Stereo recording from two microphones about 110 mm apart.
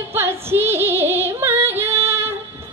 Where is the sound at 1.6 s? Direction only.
20° right (ahead or behind).